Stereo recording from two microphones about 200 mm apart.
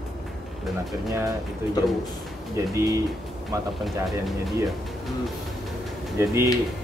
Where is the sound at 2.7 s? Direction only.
15° right (ahead or behind).